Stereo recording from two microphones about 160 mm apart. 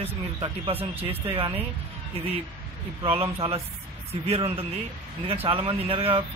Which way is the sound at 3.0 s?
35° right (ahead or behind).